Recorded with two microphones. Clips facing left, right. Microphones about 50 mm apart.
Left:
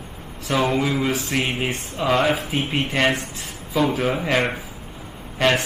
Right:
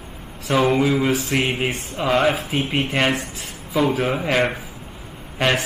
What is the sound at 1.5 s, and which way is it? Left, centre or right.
Speech, centre.